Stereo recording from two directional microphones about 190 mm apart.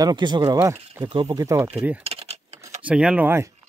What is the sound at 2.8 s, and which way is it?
Speech, 5° right (ahead or behind).